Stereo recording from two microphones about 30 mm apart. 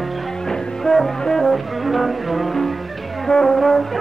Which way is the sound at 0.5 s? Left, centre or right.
Centre.